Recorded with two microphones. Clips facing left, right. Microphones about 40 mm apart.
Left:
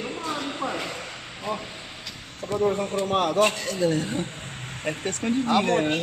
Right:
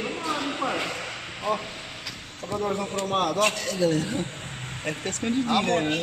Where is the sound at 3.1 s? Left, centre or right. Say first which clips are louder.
Even; left.